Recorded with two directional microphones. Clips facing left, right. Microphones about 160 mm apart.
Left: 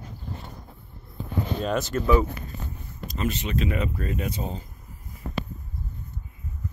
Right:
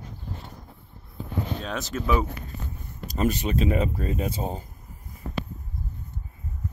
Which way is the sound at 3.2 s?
40° right (ahead or behind).